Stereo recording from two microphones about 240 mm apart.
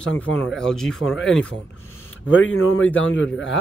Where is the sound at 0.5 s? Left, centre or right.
Centre.